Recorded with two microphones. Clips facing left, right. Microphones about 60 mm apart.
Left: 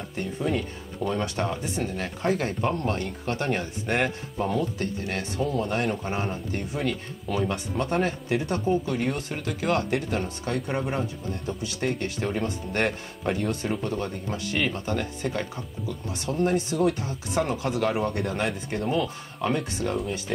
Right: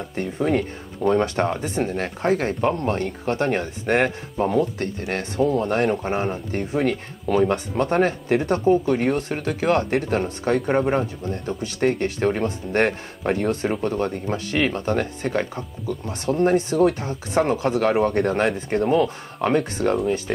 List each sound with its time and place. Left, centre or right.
0.1 s speech: right
6.5 s speech: right